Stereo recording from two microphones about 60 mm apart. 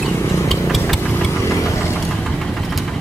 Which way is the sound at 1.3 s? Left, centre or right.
Left.